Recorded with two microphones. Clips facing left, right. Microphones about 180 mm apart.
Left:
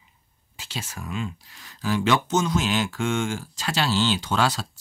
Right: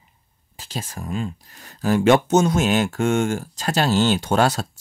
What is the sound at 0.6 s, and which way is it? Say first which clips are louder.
Speech: right 4 dB; 40° right (ahead or behind).